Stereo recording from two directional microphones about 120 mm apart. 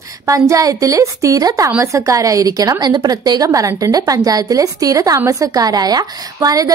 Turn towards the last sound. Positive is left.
turn(degrees=-30)  # may be behind; listen again after turning